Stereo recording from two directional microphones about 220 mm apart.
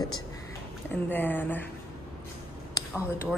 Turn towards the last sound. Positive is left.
turn(degrees=10)  # may be behind; listen again after turning